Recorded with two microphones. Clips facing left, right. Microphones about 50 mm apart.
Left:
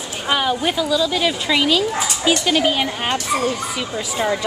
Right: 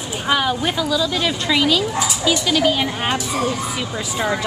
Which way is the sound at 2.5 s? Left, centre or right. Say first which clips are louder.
Right 2 dB; left.